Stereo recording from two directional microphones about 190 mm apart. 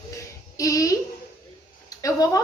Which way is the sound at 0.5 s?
20° left (ahead or behind).